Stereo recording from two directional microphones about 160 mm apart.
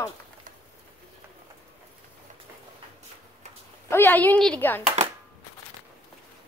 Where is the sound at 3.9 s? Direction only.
10° left (ahead or behind).